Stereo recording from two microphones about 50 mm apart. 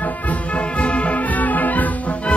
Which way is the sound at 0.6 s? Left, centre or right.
Left.